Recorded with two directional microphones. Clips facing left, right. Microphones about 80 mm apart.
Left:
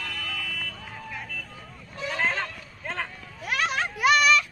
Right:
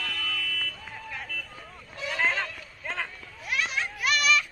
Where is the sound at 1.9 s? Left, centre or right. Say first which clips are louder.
Even; left.